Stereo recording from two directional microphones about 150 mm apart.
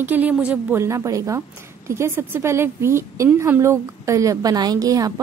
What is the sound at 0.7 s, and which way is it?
A woman's voice, 20° right (ahead or behind).